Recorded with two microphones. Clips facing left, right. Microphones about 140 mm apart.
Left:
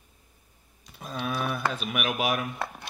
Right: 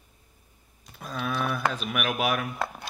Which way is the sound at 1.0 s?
15° left (ahead or behind).